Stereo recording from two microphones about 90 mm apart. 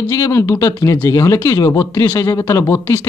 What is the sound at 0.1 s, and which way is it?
Speech, 35° left (ahead or behind).